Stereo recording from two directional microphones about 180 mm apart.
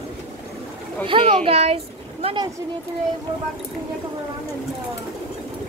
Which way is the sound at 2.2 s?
25° right (ahead or behind).